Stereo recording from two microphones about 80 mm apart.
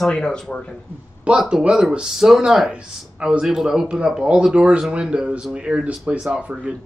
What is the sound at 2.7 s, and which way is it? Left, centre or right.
Speech, centre.